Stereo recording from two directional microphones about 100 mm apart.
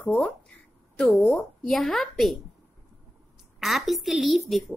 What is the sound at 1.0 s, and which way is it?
A woman's voice, 5° left (ahead or behind).